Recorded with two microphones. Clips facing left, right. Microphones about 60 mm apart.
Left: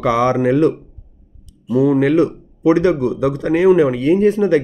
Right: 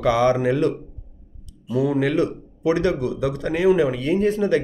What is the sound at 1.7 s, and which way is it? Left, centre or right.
A man's voice, left.